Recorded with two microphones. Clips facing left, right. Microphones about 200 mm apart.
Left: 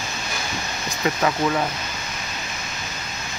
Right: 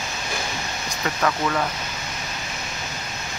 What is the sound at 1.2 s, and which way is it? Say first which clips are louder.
Speech: even; 15° left (ahead or behind).